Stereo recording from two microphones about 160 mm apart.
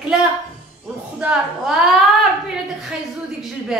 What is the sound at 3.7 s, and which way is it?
Speech, centre (ahead or behind).